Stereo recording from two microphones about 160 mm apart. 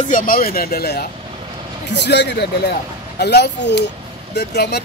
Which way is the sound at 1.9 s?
90° left.